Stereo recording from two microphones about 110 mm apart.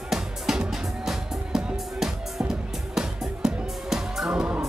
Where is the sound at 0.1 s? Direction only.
5° right (ahead or behind).